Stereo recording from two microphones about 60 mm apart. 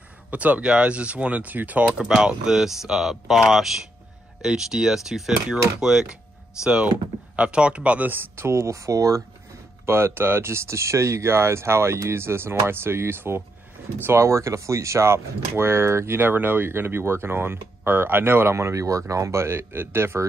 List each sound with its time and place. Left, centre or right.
0.3 s speech: right
1.9 s speech: centre
8.1 s speech: right
9.8 s speech: right